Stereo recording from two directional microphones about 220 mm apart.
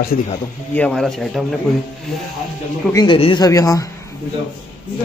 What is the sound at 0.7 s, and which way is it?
Speech, 5° left (ahead or behind).